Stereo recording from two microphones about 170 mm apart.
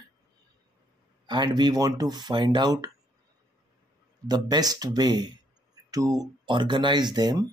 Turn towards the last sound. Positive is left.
turn(degrees=-25)  # may be behind; listen again after turning